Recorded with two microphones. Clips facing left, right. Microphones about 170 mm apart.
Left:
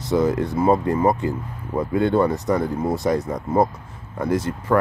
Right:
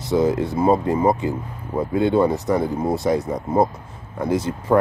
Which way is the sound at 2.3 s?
10° right (ahead or behind).